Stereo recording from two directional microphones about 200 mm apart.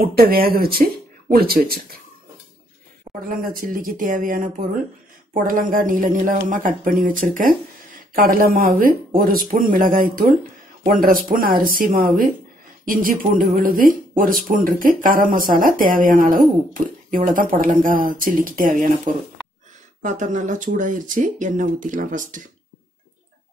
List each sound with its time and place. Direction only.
0.0 s speech: 50° right (ahead or behind)
3.1 s a sound: 25° right (ahead or behind)
3.6 s speech: 45° right (ahead or behind)